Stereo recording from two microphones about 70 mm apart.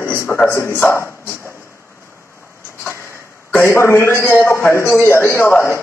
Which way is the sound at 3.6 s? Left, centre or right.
Left.